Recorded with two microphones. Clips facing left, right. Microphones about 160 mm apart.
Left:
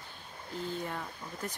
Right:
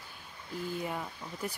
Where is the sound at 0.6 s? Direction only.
10° right (ahead or behind).